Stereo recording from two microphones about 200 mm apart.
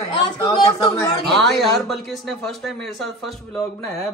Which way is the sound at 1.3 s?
Centre (ahead or behind).